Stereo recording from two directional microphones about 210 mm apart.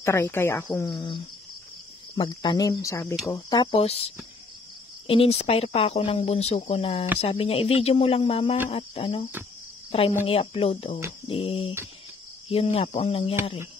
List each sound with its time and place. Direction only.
0.0 s speech: 10° left (ahead or behind)
3.7 s speech: 30° left (ahead or behind)